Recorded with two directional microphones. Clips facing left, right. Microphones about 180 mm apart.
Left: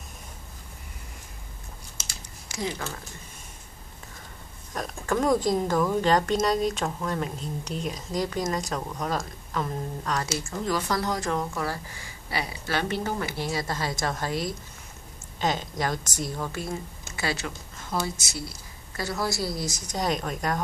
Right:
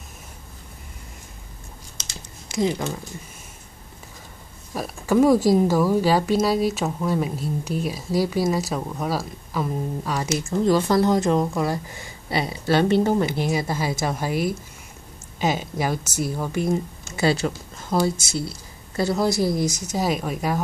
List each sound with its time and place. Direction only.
2.4 s speech: 20° right (ahead or behind)
4.7 s speech: 5° right (ahead or behind)
10.7 s speech: 25° right (ahead or behind)
17.2 s speech: 30° right (ahead or behind)
19.8 s speech: 5° right (ahead or behind)